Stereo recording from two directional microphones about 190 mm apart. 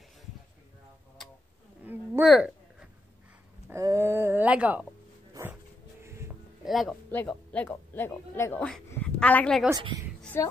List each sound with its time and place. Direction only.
2.2 s a sound: centre (ahead or behind)
3.7 s a sound: 15° right (ahead or behind)
5.3 s dog: 10° right (ahead or behind)
6.0 s music: 15° right (ahead or behind)
6.6 s speech: centre (ahead or behind)
9.7 s a woman's voice: 20° right (ahead or behind)
10.3 s speech: 15° left (ahead or behind)